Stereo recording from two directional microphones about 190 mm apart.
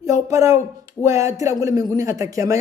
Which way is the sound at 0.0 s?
15° right (ahead or behind).